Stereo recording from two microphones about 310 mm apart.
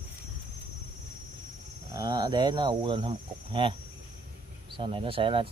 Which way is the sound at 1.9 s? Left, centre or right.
Centre.